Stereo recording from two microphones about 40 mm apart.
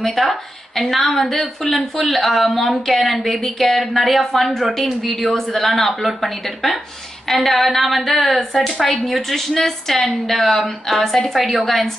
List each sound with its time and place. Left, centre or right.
0.0 s a woman's voice: centre